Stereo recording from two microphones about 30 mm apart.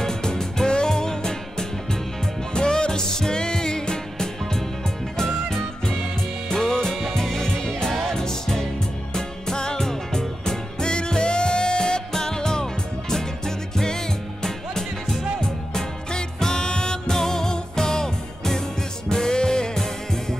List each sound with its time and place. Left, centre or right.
0.0 s music: left
12.1 s music: centre
17.1 s music: centre